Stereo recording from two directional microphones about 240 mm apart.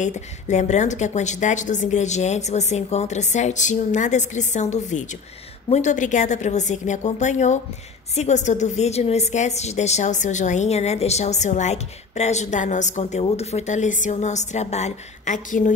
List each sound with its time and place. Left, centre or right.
0.0 s a woman's voice: left